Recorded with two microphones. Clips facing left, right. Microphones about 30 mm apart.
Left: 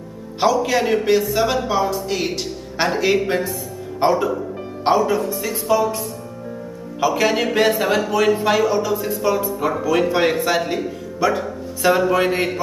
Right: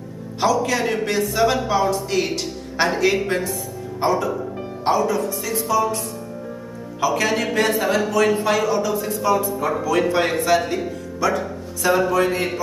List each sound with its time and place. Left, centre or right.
0.4 s speech: centre
7.0 s speech: centre
8.9 s a woman's voice: centre; by 12.4 s left